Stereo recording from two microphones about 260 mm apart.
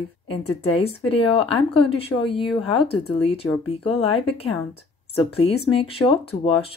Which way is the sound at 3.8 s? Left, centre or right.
Left.